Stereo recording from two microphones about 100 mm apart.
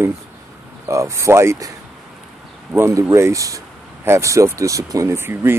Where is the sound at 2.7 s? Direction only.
25° right (ahead or behind).